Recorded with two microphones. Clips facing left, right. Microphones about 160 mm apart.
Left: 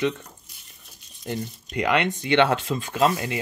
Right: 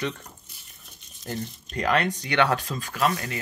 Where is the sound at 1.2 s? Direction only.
15° left (ahead or behind).